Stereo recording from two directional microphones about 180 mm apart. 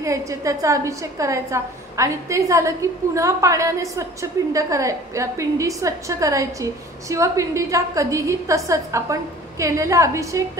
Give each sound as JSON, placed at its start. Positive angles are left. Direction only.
{"t": 0.0, "sound": "a woman's voice", "side_deg": -20}